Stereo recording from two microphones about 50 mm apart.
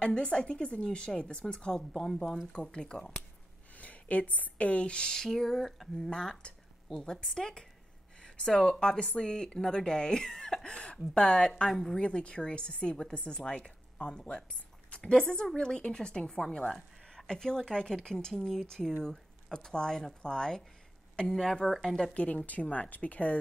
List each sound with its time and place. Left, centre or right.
0.0 s a woman's voice: centre
3.7 s a sound: left
4.4 s a woman's voice: left
11.7 s speech: centre
12.0 s a woman's voice: centre
22.1 s a woman's voice: left